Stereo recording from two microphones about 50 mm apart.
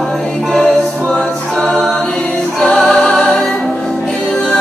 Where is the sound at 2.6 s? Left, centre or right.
Centre.